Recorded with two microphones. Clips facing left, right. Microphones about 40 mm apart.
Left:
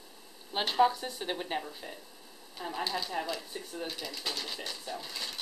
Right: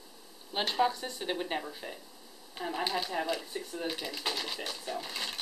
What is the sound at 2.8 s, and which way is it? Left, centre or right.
Speech, right.